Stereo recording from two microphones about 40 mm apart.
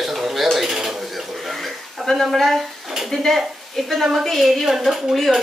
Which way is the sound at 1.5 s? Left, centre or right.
Centre.